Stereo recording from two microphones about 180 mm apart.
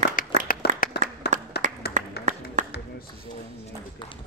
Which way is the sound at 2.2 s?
65° left (ahead or behind).